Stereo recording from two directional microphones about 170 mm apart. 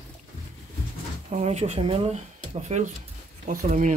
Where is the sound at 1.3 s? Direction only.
40° right (ahead or behind).